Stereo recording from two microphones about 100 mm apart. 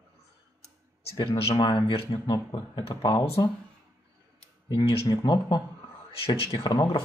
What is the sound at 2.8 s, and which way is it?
Speech, 60° left (ahead or behind).